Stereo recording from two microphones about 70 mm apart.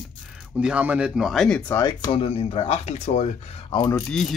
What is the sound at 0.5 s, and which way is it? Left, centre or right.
Speech, centre.